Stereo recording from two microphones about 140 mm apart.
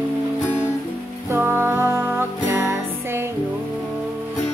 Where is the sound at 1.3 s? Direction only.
15° right (ahead or behind).